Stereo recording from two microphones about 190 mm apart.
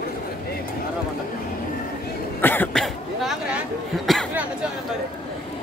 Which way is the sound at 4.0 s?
Centre (ahead or behind).